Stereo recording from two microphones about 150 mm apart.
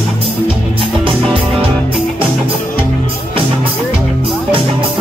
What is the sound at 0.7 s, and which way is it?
Music, 35° right (ahead or behind).